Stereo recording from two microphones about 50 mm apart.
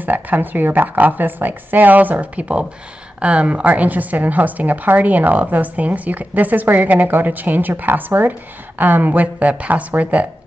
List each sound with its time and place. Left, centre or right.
0.0 s a woman's voice: right